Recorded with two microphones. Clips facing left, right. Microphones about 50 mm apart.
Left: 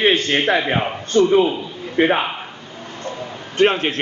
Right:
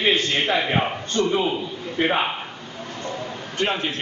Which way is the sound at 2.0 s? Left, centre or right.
Left.